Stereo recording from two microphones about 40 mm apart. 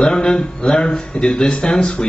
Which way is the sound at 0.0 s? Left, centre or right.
Left.